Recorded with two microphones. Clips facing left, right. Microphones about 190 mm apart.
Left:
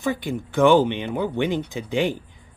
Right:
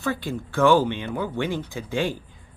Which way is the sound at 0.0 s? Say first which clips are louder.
Left 2 dB; 15° left (ahead or behind).